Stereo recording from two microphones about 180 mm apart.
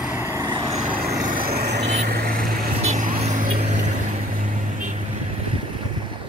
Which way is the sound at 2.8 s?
40° right (ahead or behind).